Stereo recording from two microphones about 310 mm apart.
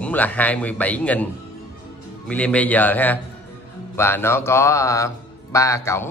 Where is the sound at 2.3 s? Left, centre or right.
Centre.